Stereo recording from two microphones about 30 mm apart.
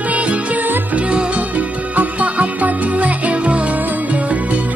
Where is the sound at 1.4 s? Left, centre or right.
Right.